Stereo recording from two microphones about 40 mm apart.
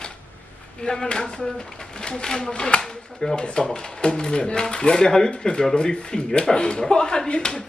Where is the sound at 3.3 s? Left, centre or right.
Left.